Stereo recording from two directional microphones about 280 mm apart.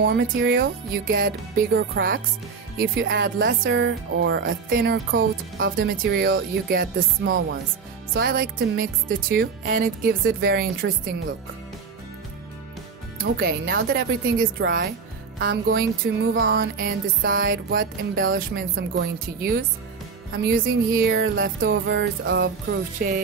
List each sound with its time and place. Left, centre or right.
0.0 s speech: right
13.2 s speech: right
16.5 s speech: right